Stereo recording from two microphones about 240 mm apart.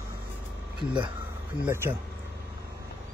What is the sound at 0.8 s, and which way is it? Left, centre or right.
Speech, right.